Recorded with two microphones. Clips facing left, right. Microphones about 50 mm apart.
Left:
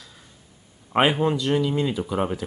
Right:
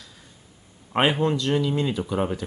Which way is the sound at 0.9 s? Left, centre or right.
Centre.